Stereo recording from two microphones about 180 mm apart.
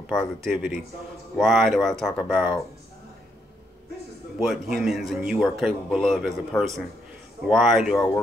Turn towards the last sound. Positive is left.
turn(degrees=0)  # may be behind; listen again after turning